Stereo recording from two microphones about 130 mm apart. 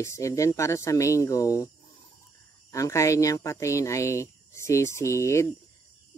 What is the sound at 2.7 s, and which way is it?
Speech, 25° left (ahead or behind).